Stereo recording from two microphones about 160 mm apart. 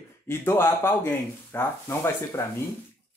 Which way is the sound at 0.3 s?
15° left (ahead or behind).